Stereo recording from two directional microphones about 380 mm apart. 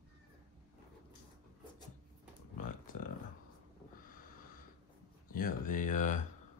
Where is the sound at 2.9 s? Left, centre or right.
Left.